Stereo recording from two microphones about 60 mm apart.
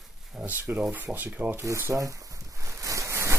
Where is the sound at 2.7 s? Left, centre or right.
Right.